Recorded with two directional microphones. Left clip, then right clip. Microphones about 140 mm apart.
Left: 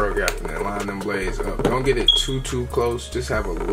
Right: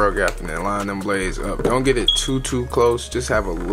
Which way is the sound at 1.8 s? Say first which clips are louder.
Left 2 dB; 45° right (ahead or behind).